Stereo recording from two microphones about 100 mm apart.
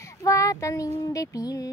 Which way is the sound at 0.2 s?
30° left (ahead or behind).